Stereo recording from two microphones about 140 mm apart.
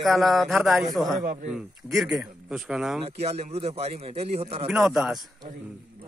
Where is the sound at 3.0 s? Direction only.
45° right (ahead or behind).